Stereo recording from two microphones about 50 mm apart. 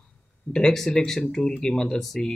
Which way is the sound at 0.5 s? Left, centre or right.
Centre.